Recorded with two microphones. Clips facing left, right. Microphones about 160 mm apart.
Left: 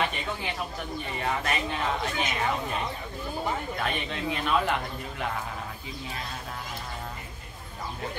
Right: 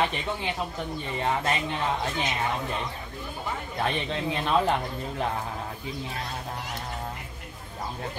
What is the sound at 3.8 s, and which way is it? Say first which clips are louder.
Speech: right 3 dB; 30° right (ahead or behind).